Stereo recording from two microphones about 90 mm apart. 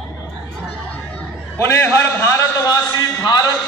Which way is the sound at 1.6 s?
25° left (ahead or behind).